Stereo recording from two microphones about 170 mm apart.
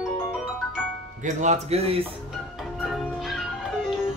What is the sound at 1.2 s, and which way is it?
Speech, 45° right (ahead or behind).